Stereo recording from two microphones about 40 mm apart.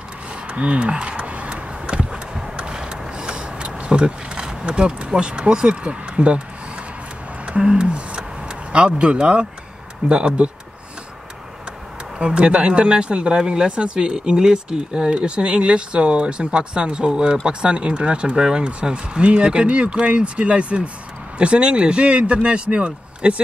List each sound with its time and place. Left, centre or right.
0.5 s vehicle: right
7.4 s a sound: right
10.0 s speech: right
12.2 s speech: right